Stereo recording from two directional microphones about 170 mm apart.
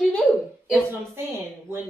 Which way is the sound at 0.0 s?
5° left (ahead or behind).